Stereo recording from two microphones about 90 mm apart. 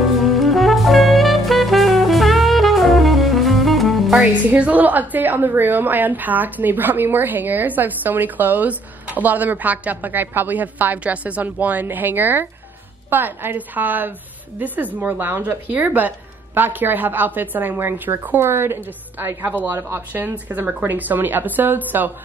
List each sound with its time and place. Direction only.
0.2 s music: centre (ahead or behind)
4.2 s a woman's voice: 15° right (ahead or behind)